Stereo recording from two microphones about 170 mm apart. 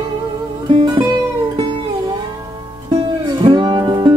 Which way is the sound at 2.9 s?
30° right (ahead or behind).